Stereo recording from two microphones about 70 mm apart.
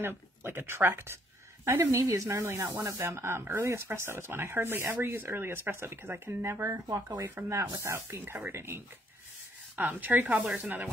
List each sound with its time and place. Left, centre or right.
0.0 s speech: right
9.8 s speech: right